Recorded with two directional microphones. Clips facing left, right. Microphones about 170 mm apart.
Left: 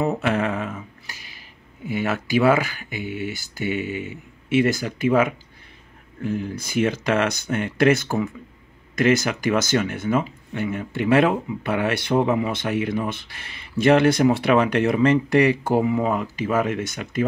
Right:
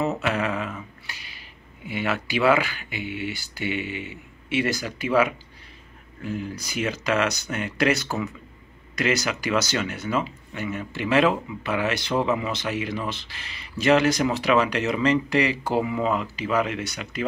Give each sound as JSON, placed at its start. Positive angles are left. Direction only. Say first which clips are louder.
{"t": 0.2, "sound": "speech", "louder": "left 3 dB", "side_deg": 50}
{"t": 1.0, "sound": "a sound", "louder": "even", "side_deg": 45}
{"t": 1.9, "sound": "speech", "louder": "left 3 dB", "side_deg": 45}